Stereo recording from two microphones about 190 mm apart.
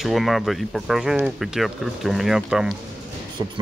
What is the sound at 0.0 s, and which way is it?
Speech, centre (ahead or behind).